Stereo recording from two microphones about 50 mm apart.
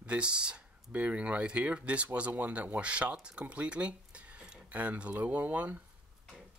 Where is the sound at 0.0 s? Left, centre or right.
Right.